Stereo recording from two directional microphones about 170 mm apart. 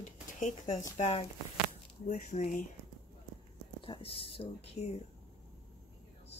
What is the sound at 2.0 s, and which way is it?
Speech, 45° left (ahead or behind).